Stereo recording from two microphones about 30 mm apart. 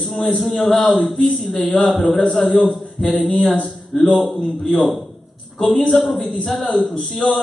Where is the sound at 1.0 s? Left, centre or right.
Left.